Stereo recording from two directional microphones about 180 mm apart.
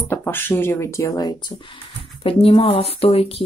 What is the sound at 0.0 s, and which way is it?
Speech, 10° left (ahead or behind).